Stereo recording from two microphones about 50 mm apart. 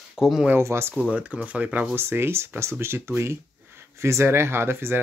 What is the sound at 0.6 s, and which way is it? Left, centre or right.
Speech, right.